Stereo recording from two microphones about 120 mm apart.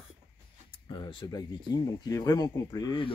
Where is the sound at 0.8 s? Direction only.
40° left (ahead or behind).